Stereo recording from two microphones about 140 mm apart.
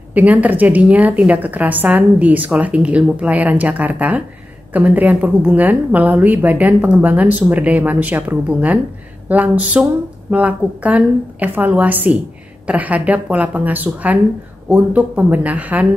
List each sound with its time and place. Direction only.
0.1 s a woman's voice: 10° right (ahead or behind)